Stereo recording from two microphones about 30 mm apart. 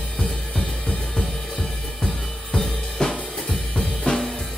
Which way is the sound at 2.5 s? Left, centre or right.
Centre.